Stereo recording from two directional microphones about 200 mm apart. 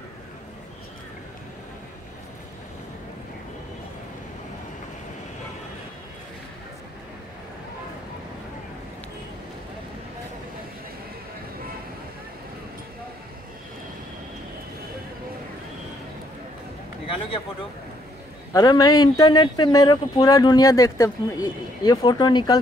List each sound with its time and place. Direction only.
18.5 s speech: 20° left (ahead or behind)